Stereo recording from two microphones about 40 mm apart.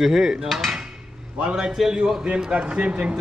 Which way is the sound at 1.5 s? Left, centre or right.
Centre.